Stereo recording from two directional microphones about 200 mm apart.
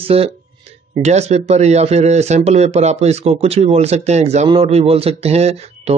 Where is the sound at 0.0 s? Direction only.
30° right (ahead or behind).